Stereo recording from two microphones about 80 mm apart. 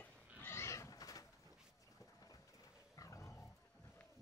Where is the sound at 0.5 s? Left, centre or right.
Left.